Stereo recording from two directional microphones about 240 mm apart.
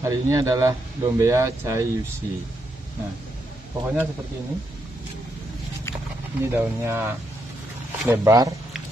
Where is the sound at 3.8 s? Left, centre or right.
Centre.